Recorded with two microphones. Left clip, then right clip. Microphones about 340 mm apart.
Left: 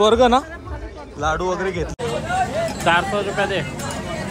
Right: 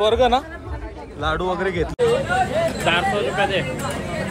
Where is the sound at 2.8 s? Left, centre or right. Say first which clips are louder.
Left 4 dB; left.